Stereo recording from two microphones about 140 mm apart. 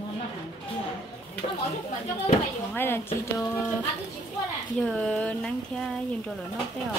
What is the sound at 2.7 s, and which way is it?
Speech, 15° left (ahead or behind).